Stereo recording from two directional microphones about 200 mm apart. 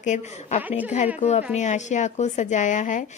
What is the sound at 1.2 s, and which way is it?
Speech, 35° left (ahead or behind).